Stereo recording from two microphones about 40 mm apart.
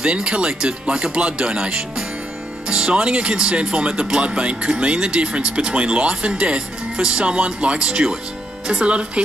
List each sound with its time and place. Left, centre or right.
0.0 s speech: right